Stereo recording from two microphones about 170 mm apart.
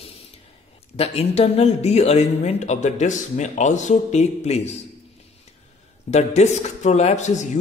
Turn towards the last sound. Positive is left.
turn(degrees=45)  # may be behind; listen again after turning